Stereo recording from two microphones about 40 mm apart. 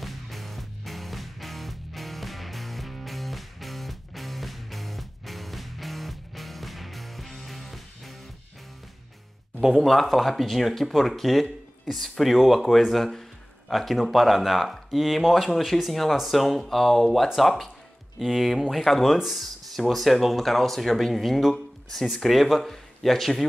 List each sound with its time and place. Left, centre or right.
0.0 s music: centre
9.8 s speech: centre
19.1 s speech: centre
19.4 s speech: centre